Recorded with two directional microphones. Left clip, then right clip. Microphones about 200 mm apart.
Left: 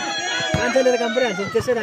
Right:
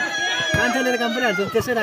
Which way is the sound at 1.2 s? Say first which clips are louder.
Even; 50° right (ahead or behind).